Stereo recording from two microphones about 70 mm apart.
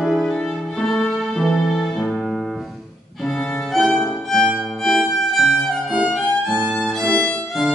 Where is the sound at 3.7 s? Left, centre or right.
Centre.